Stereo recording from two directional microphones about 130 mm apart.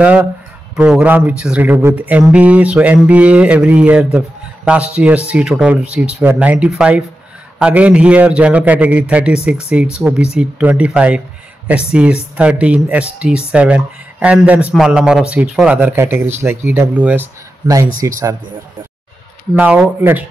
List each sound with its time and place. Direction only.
0.0 s speech: 10° right (ahead or behind)
18.0 s speech: 25° right (ahead or behind)
19.5 s speech: 10° right (ahead or behind)